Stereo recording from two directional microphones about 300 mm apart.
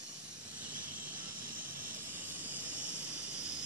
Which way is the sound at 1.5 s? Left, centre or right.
Right.